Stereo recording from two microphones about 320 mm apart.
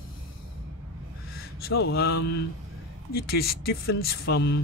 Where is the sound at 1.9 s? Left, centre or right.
Left.